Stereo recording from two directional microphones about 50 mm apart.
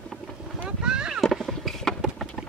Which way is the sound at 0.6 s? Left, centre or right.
Centre.